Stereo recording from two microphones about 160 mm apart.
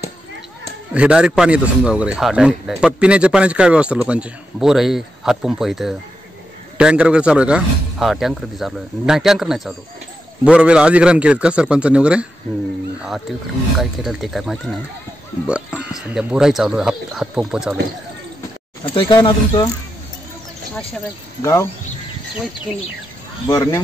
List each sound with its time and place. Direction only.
0.9 s a man's voice: 5° right (ahead or behind)
13.7 s a man's voice: centre (ahead or behind)
18.9 s speech: 30° left (ahead or behind)
21.4 s speech: 20° left (ahead or behind)
23.5 s speech: 20° left (ahead or behind)